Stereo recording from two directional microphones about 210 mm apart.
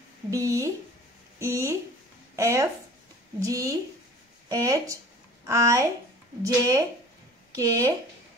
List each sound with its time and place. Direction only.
0.3 s speech: 15° right (ahead or behind)